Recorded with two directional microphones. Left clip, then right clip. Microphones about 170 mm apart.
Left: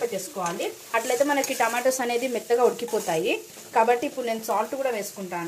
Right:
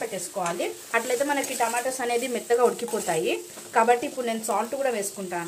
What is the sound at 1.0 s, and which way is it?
Speech, 10° left (ahead or behind).